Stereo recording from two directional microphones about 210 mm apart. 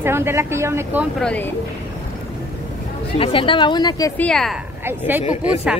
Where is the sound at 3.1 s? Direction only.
25° left (ahead or behind).